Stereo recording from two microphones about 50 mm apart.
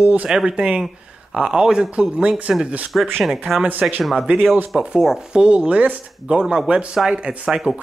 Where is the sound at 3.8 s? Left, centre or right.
Centre.